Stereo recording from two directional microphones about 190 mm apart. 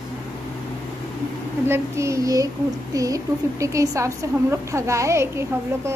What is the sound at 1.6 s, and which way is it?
A woman's voice, 15° right (ahead or behind).